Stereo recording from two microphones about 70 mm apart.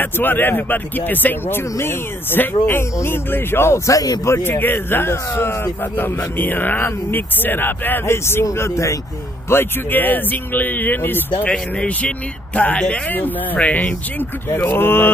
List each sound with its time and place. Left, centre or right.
0.0 s speech: left
4.3 s speech: left
9.5 s speech: left
11.4 s speech: centre; by 15.1 s left